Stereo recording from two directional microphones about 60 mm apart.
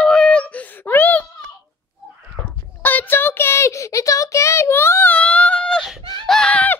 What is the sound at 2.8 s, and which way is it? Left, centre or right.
Child singing, left.